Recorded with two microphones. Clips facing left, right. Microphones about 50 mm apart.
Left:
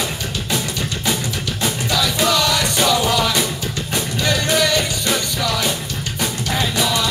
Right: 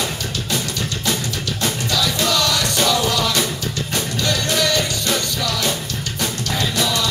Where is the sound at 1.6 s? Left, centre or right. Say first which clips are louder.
Left 1 dB; centre.